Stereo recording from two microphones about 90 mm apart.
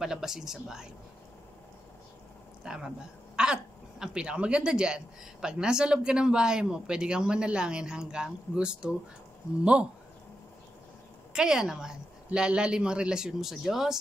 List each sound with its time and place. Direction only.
0.0 s speech: 5° right (ahead or behind)
2.6 s speech: 5° right (ahead or behind)
3.4 s a sound: 10° right (ahead or behind)
4.0 s a woman's voice: 10° right (ahead or behind)
11.3 s a woman's voice: 5° right (ahead or behind)